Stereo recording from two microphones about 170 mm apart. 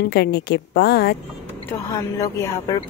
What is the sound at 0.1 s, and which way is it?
A woman's voice, 75° left (ahead or behind).